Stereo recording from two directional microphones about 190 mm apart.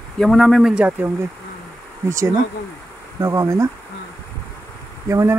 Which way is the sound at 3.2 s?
15° right (ahead or behind).